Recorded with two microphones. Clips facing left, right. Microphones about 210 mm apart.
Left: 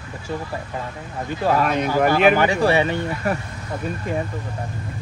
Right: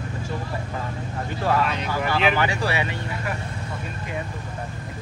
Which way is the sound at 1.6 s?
50° left (ahead or behind).